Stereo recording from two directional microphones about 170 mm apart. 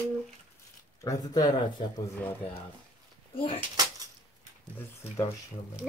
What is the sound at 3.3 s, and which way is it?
Speech, 30° left (ahead or behind).